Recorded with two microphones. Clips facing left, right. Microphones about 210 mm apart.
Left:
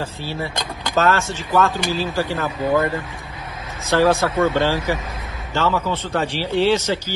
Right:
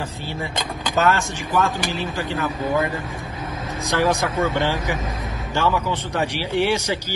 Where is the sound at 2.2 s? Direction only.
45° left (ahead or behind).